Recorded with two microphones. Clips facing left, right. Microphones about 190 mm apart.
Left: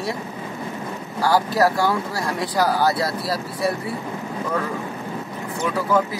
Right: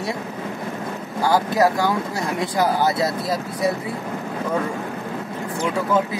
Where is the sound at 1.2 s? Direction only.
20° right (ahead or behind).